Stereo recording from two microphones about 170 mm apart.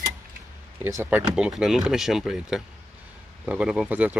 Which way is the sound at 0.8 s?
15° right (ahead or behind).